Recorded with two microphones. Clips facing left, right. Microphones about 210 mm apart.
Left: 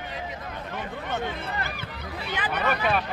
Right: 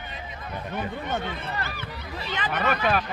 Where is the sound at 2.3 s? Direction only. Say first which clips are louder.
Right 1 dB; 10° left (ahead or behind).